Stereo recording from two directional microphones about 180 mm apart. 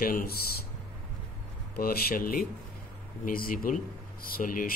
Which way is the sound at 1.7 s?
60° left (ahead or behind).